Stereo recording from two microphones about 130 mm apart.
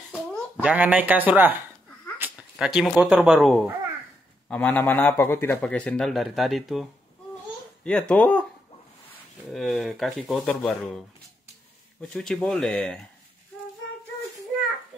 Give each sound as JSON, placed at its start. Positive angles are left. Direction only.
{"t": 0.6, "sound": "speech", "side_deg": -10}
{"t": 2.1, "sound": "cat", "side_deg": -15}
{"t": 2.7, "sound": "a man's voice", "side_deg": 0}
{"t": 9.5, "sound": "speech", "side_deg": 0}